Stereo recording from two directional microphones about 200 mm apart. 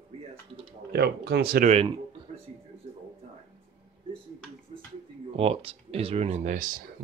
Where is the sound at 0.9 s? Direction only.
55° right (ahead or behind).